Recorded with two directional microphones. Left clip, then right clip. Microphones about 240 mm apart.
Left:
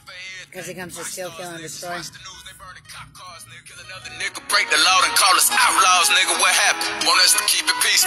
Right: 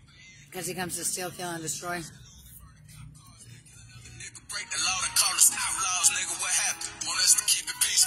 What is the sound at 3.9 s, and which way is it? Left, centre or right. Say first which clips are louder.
Music: left 18 dB; left.